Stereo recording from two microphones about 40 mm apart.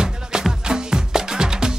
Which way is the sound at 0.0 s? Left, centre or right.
Centre.